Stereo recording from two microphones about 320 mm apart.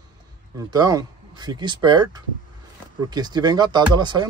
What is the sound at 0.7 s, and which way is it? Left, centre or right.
Speech, centre.